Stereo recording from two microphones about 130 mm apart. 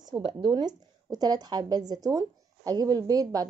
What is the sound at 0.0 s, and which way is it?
A woman's voice, 35° right (ahead or behind).